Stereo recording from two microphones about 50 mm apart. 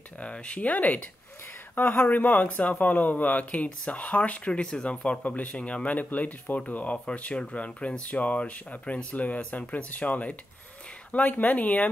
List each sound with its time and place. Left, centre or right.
0.2 s speech: left
2.0 s a man's voice: left